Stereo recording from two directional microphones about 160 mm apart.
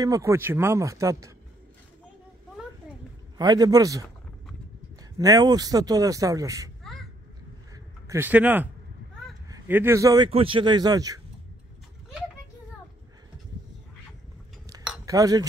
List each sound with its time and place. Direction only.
0.0 s a man's voice: 20° right (ahead or behind)
3.3 s a man's voice: 25° right (ahead or behind)
5.2 s a man's voice: 25° right (ahead or behind)
6.8 s a sound: centre (ahead or behind)
7.7 s a sound: 15° right (ahead or behind)
9.5 s a man's voice: 15° right (ahead or behind)
15.0 s a man's voice: 20° right (ahead or behind)